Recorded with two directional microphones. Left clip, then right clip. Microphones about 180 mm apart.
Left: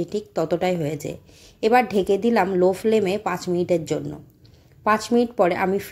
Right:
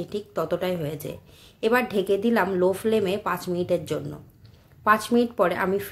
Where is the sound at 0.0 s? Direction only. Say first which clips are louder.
Left 4 dB; 20° left (ahead or behind).